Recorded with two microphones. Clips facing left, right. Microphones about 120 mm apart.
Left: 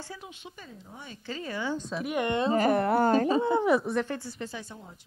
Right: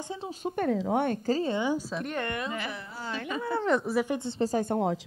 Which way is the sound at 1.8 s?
Centre (ahead or behind).